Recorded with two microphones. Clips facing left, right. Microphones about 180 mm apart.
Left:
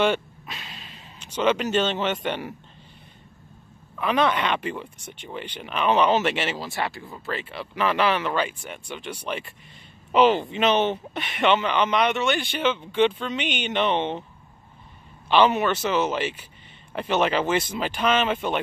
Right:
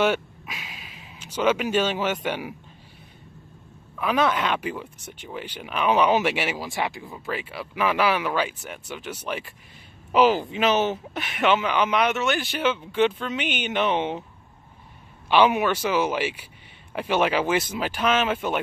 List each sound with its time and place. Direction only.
0.0 s a sound: 10° right (ahead or behind)
4.0 s speech: 5° right (ahead or behind)
15.2 s speech: 10° right (ahead or behind)